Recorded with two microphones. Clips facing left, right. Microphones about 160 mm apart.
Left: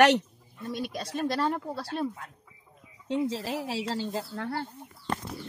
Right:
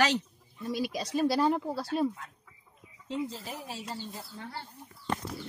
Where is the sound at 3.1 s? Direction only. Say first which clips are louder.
Left 6 dB; 85° left.